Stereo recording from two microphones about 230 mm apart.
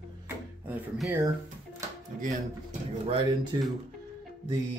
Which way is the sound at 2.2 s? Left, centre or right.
Right.